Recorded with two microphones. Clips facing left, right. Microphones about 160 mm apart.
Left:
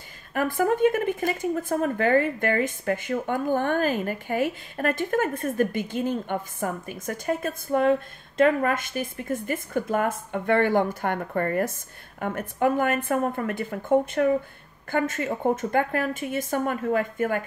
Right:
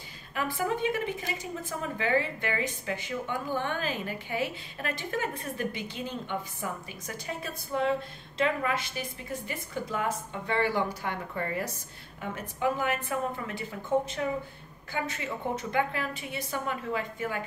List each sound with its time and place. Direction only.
0.3 s a woman's voice: 50° left (ahead or behind)